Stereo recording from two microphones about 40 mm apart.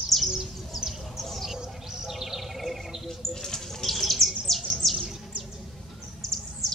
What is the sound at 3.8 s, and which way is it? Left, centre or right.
Bird, centre.